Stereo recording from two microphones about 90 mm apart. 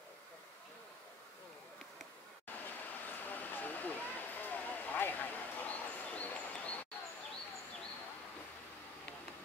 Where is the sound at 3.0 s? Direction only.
20° left (ahead or behind).